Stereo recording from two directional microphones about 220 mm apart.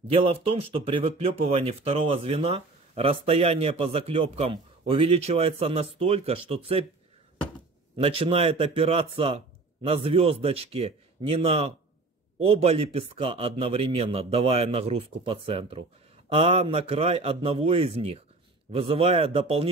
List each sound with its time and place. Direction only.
0.1 s speech: 25° right (ahead or behind)
8.0 s speech: 25° right (ahead or behind)